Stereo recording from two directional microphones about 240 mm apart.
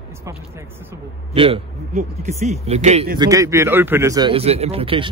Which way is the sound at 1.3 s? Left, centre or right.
Right.